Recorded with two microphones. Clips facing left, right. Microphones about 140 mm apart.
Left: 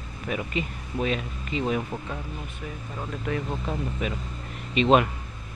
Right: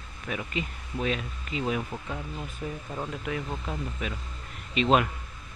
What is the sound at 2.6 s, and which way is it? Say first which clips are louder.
Speech: right 4 dB; 25° right (ahead or behind).